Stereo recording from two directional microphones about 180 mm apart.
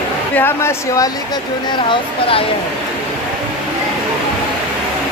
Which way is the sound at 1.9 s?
30° left (ahead or behind).